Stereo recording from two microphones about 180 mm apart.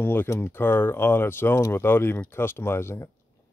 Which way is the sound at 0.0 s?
10° left (ahead or behind).